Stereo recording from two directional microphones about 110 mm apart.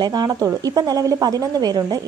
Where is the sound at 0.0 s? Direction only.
40° right (ahead or behind).